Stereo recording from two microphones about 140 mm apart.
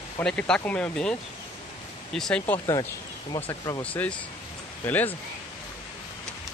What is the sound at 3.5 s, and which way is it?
Speech, 25° left (ahead or behind).